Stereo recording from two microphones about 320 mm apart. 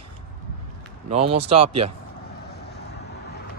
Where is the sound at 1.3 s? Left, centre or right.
Centre.